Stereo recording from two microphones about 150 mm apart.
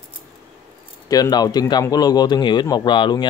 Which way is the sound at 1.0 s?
25° left (ahead or behind).